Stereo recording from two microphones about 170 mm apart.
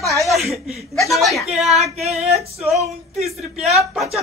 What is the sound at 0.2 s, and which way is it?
Speech, centre (ahead or behind).